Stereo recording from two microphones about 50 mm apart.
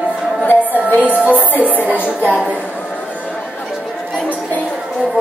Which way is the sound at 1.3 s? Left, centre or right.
Left.